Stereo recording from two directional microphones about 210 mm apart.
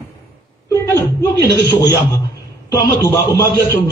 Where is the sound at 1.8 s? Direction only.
15° left (ahead or behind).